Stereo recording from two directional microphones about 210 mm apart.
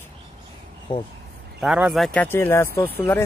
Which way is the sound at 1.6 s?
5° right (ahead or behind).